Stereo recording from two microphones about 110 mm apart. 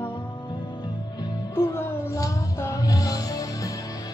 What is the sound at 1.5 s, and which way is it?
Music, 25° left (ahead or behind).